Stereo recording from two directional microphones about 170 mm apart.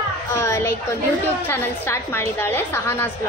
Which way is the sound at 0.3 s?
15° left (ahead or behind).